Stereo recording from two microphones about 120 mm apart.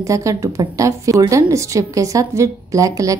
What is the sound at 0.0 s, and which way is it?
A woman's voice, 25° right (ahead or behind).